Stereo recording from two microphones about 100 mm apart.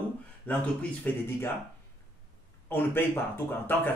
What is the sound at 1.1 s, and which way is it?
Speech, 15° left (ahead or behind).